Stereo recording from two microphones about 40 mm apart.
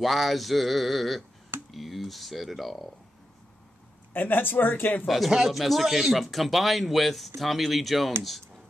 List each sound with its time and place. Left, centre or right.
0.0 s speech: centre
4.1 s speech: left
5.0 s speech: centre